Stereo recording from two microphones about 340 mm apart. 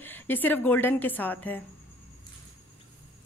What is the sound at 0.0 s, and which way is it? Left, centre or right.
A woman's voice, centre.